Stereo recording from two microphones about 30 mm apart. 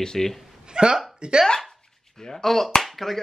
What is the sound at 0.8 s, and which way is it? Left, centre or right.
Speech, right.